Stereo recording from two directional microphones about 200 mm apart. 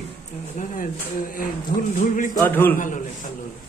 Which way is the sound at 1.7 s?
40° left (ahead or behind).